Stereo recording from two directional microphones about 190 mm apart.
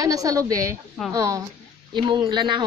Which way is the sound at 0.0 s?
15° right (ahead or behind).